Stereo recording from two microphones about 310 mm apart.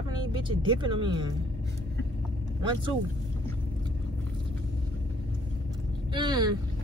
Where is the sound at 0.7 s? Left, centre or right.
Centre.